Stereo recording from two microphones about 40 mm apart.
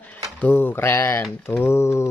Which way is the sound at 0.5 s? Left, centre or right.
Left.